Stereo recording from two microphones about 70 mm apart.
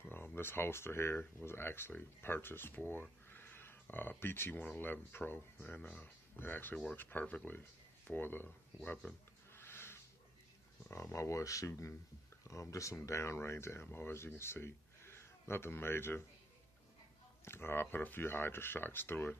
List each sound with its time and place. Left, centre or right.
0.1 s speech: left
4.6 s speech: centre
4.8 s speech: left
9.5 s a sound: left
10.9 s speech: left
17.5 s speech: left